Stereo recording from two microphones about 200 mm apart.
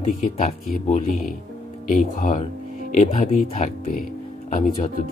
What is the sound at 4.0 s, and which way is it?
Speech, 40° left (ahead or behind).